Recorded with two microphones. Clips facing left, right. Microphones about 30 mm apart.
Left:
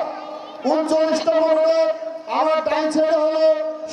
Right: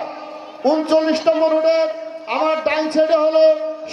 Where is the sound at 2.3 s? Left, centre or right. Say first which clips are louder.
Right 1 dB; right.